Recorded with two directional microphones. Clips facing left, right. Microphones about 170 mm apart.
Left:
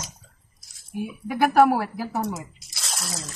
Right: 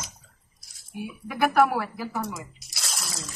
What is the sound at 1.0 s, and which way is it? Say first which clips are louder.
Speech: left 3 dB; 35° left (ahead or behind).